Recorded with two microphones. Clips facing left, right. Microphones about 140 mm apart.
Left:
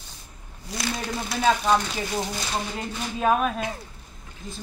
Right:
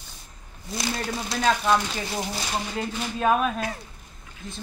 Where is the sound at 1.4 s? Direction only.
5° left (ahead or behind).